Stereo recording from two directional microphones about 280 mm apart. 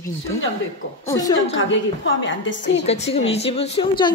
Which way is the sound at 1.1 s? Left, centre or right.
Centre.